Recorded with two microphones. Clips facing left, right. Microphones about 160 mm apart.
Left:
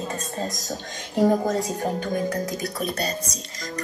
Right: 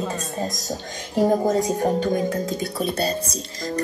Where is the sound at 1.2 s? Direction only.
20° right (ahead or behind).